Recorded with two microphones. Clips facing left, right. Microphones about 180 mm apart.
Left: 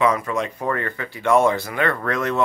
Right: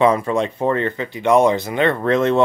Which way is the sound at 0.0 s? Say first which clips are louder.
Right 5 dB; 30° right (ahead or behind).